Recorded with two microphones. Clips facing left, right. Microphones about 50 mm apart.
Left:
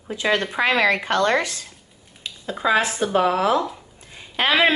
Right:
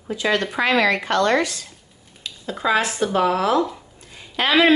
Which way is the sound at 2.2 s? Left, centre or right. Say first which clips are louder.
Left 1 dB; centre.